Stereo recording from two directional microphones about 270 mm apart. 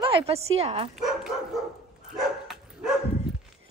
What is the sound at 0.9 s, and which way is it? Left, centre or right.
Dog, centre.